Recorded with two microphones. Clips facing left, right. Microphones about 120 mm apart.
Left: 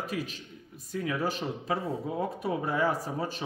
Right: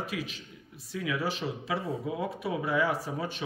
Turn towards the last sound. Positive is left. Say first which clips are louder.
# left 1 dB
turn(degrees=40)  # may be behind; listen again after turning